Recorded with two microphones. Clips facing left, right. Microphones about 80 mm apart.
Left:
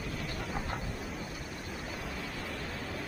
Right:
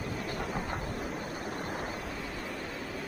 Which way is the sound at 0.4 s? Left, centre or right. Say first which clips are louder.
Right 2 dB; centre.